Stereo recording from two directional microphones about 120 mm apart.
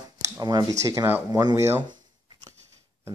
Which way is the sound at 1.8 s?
40° right (ahead or behind).